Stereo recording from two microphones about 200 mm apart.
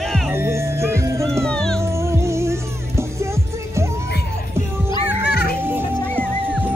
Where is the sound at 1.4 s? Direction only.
5° left (ahead or behind).